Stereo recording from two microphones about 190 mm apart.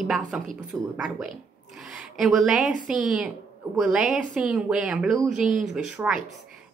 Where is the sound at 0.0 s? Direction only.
5° right (ahead or behind).